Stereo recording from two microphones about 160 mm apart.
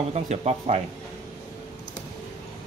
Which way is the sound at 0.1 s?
40° right (ahead or behind).